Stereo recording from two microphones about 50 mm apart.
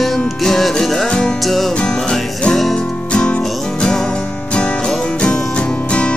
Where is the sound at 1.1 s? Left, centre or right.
Centre.